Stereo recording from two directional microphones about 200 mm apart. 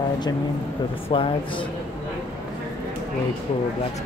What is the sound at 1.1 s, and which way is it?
Speech, 25° left (ahead or behind).